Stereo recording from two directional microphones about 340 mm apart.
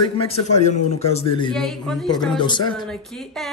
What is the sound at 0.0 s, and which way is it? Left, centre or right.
Speech, centre.